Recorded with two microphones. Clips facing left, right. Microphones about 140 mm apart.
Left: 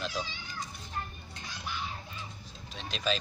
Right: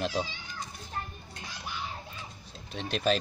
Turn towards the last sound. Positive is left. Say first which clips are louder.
# right 5 dB
turn(degrees=-55)  # may be behind; listen again after turning